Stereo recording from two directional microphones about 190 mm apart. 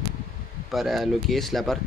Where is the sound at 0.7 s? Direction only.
Centre (ahead or behind).